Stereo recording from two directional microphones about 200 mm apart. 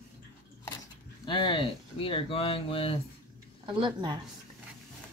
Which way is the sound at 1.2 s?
25° left (ahead or behind).